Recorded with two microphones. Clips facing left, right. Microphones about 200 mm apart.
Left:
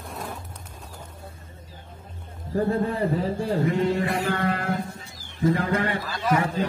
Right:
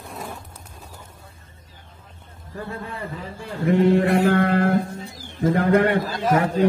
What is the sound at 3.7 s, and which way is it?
Mantra, 60° right (ahead or behind).